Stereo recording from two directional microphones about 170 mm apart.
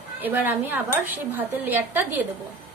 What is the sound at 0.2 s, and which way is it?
A woman's voice, 15° right (ahead or behind).